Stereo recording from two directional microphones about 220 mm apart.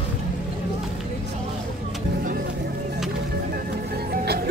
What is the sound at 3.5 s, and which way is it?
Music, 45° right (ahead or behind).